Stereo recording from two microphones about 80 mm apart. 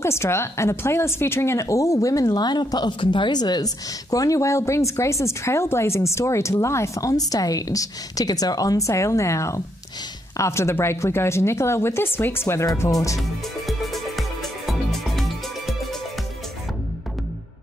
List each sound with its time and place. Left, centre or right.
0.0 s a woman's voice: left
13.7 s music: centre